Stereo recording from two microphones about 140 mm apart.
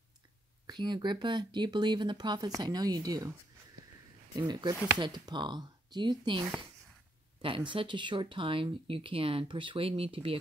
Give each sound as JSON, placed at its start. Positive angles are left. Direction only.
{"t": 0.7, "sound": "speech", "side_deg": -30}
{"t": 4.4, "sound": "speech", "side_deg": -30}